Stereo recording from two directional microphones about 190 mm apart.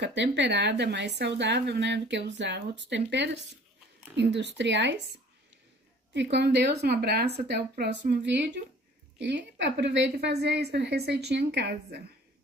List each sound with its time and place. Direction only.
0.0 s speech: 65° right (ahead or behind)
6.1 s speech: 60° right (ahead or behind)